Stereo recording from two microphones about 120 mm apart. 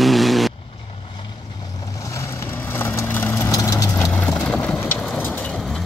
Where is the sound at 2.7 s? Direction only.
20° left (ahead or behind).